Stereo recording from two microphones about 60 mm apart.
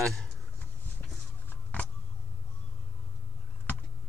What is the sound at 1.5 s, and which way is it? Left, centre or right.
Vehicle, left.